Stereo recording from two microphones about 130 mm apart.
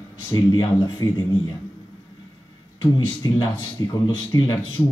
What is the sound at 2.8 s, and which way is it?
Speech, 30° left (ahead or behind).